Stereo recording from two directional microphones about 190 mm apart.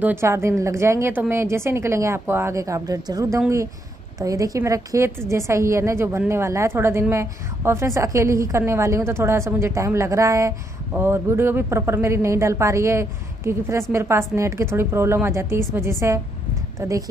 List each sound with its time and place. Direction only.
0.0 s a woman's voice: 10° right (ahead or behind)